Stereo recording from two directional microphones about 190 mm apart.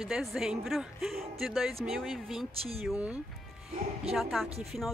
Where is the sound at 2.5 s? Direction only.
30° right (ahead or behind).